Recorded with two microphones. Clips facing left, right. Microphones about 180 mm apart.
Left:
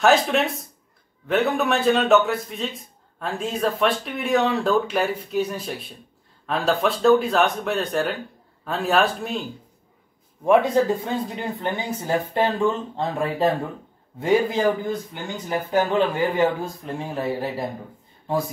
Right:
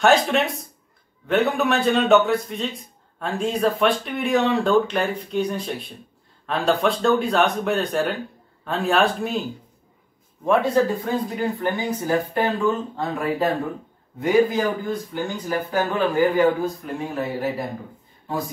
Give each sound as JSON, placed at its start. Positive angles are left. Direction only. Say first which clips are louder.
{"t": 0.0, "sound": "a man's voice", "louder": "even", "side_deg": 0}
{"t": 10.4, "sound": "speech", "louder": "left 1 dB", "side_deg": 15}